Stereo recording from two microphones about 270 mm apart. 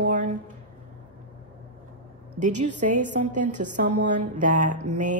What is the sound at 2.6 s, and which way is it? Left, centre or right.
A woman's voice, right.